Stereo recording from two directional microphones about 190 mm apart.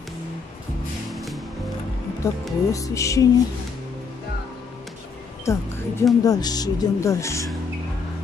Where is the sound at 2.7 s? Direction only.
15° left (ahead or behind).